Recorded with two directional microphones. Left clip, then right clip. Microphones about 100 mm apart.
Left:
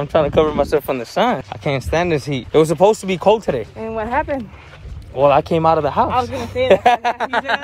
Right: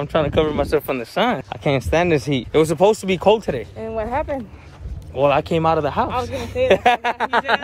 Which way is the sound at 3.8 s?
80° left.